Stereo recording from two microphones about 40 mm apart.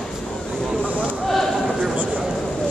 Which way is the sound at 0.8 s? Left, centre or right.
Right.